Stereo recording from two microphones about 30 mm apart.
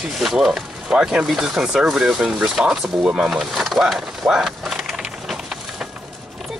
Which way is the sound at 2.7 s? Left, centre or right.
Centre.